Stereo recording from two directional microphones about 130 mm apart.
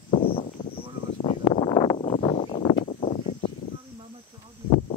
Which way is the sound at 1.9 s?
45° left (ahead or behind).